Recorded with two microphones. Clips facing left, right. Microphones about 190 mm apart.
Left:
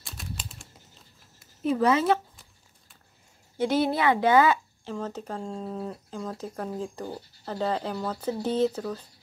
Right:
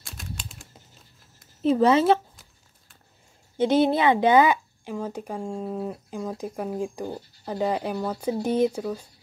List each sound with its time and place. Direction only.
0.0 s typing: centre (ahead or behind)
1.6 s a woman's voice: 25° right (ahead or behind)
3.5 s speech: 20° right (ahead or behind)